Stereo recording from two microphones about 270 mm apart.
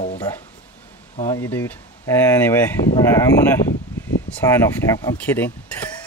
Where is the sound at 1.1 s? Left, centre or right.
Left.